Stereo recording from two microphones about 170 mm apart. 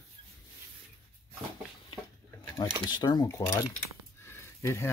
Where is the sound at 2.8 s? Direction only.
25° left (ahead or behind).